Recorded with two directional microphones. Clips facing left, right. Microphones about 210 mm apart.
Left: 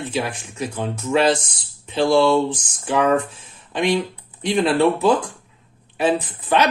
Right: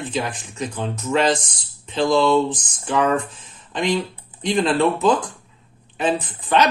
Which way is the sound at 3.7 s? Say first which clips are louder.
Left 2 dB; 10° left (ahead or behind).